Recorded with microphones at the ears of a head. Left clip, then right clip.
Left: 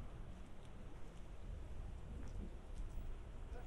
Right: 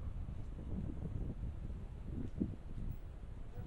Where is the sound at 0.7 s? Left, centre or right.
Right.